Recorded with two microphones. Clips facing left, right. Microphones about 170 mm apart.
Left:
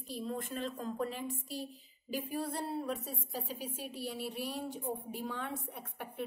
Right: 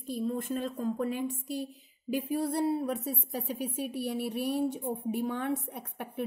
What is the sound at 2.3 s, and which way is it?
A woman's voice, 65° right (ahead or behind).